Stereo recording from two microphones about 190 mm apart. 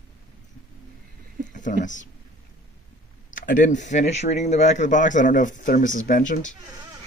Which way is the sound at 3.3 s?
45° left (ahead or behind).